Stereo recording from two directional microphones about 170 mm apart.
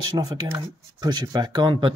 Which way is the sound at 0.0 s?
25° right (ahead or behind).